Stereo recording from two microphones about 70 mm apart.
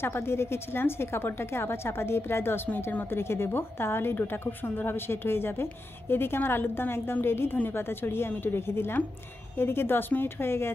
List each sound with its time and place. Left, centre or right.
0.0 s a woman's voice: left